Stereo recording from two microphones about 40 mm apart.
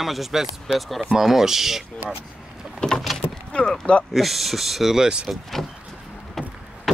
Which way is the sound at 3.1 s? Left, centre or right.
Centre.